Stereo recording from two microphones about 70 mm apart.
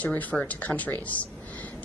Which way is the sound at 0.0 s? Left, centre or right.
Left.